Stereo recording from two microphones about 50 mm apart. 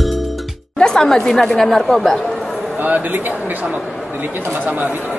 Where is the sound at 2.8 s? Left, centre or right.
Right.